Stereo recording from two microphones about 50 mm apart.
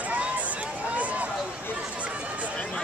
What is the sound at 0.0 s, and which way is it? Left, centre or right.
Run, right.